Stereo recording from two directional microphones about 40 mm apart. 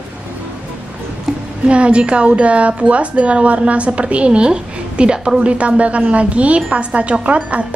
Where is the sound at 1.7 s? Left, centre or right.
Right.